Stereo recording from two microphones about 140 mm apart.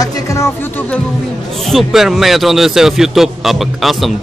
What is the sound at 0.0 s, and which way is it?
Speech, 20° left (ahead or behind).